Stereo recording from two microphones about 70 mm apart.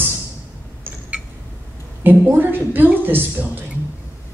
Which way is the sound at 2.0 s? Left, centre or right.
Right.